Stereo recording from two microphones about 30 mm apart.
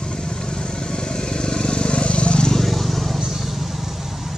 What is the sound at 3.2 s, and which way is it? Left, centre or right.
Vehicle, centre.